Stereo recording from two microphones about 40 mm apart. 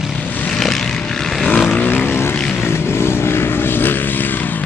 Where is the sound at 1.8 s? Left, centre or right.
Left.